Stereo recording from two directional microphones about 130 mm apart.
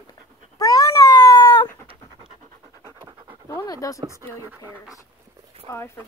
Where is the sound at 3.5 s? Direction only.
30° left (ahead or behind).